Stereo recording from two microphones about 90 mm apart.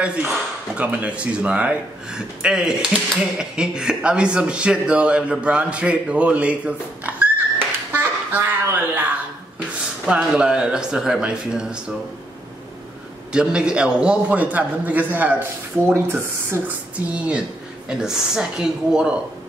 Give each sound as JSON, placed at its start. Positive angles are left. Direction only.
{"t": 0.0, "sound": "a man's voice", "side_deg": -15}
{"t": 10.0, "sound": "a man's voice", "side_deg": -10}
{"t": 13.3, "sound": "a man's voice", "side_deg": -10}